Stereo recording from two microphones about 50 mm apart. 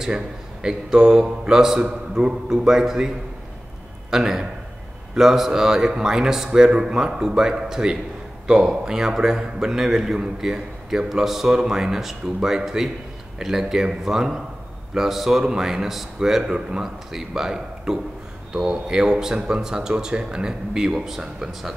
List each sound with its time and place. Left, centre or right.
0.0 s a man's voice: centre
4.1 s a man's voice: centre